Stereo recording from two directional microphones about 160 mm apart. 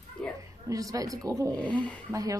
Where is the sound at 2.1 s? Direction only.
20° right (ahead or behind).